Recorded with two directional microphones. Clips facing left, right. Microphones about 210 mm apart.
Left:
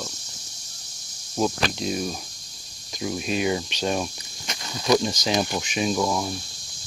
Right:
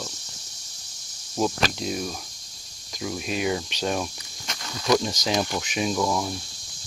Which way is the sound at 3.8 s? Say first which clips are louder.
Left 1 dB; 10° left (ahead or behind).